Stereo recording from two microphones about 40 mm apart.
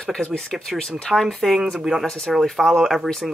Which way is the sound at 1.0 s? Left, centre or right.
Centre.